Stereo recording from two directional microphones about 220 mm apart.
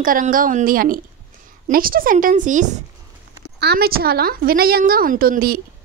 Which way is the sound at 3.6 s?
45° right (ahead or behind).